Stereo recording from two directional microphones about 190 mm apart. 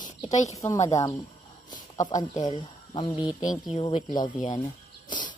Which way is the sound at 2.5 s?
25° left (ahead or behind).